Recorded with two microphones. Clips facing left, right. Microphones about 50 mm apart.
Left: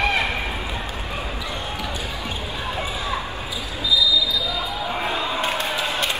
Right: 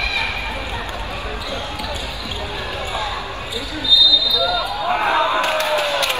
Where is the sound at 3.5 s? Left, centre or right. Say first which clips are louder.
Right 4 dB; left.